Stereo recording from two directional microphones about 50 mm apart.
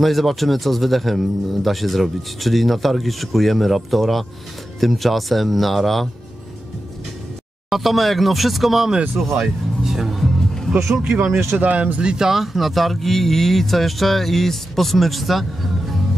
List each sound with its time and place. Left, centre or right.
0.0 s speech: centre
7.7 s speech: centre
9.4 s music: centre
10.9 s speech: centre
11.5 s speech: right
12.1 s speech: centre